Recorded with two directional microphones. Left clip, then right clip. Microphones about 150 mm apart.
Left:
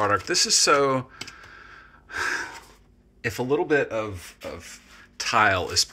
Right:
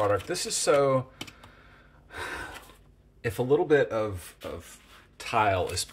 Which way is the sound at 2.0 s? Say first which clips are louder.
Left 9 dB; 5° right (ahead or behind).